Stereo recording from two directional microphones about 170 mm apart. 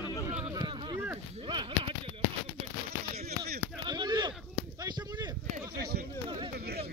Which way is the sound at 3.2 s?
65° right (ahead or behind).